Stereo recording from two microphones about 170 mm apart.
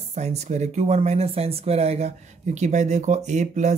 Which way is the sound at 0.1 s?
40° right (ahead or behind).